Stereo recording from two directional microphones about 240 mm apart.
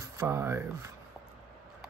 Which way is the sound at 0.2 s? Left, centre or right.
Centre.